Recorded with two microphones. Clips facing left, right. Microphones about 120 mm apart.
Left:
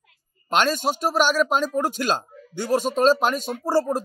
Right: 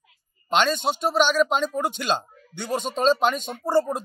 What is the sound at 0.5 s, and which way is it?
A man's voice, 5° left (ahead or behind).